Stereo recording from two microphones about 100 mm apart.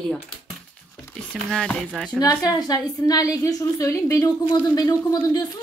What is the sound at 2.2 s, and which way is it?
A woman's voice, 40° left (ahead or behind).